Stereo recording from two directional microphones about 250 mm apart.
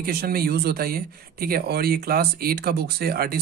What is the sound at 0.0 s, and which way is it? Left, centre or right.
Speech, right.